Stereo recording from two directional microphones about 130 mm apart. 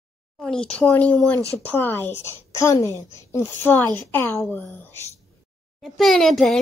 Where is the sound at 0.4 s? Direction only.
5° left (ahead or behind).